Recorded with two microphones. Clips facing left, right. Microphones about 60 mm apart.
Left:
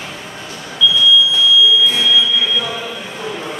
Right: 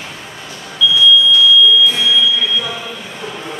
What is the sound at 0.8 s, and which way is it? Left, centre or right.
Smoke detector, centre.